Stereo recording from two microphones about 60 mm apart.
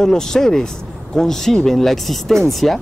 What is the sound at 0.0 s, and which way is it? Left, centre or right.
Speech, centre.